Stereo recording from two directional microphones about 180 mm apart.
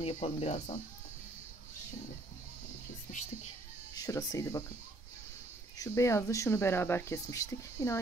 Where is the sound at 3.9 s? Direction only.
20° left (ahead or behind).